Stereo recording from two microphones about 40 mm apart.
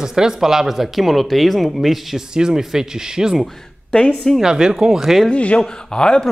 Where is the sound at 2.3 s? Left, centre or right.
Centre.